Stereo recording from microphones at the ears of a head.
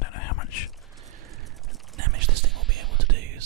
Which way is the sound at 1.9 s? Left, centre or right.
Right.